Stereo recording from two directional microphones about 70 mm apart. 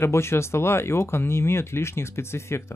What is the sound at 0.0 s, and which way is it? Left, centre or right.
Speech, left.